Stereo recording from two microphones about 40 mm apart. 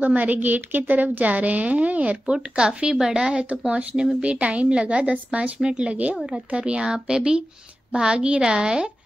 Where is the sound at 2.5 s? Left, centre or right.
Right.